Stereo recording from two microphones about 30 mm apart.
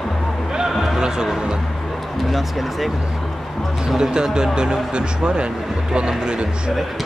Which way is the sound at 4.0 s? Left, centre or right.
Right.